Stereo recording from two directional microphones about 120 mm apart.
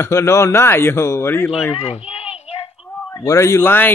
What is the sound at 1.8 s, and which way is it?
Speech, 55° left (ahead or behind).